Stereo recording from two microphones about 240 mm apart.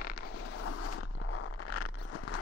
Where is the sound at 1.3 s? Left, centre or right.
Left.